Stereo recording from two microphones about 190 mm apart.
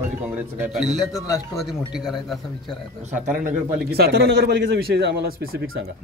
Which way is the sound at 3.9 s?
60° right (ahead or behind).